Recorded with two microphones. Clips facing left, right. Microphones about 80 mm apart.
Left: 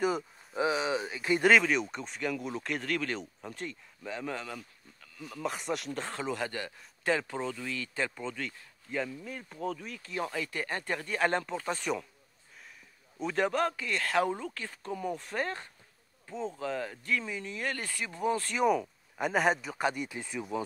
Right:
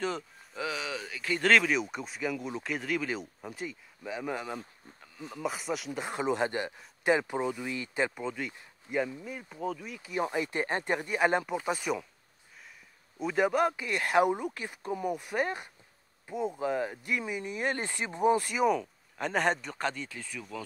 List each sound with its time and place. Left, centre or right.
0.6 s speech: left
1.5 s speech: centre
4.6 s insect: right
5.4 s speech: centre
13.2 s speech: centre
18.7 s speech: centre; by 20.6 s left